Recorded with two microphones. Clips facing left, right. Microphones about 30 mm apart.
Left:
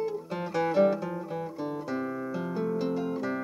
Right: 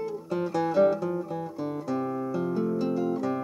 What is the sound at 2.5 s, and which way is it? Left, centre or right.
Music, centre.